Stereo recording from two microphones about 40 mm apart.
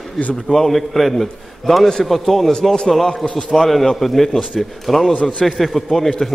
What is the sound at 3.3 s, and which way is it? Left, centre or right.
Speech, left.